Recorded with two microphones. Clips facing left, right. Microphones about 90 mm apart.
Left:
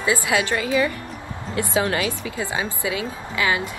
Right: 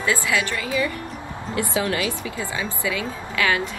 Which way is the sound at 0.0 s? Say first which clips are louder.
Left 1 dB; 20° left (ahead or behind).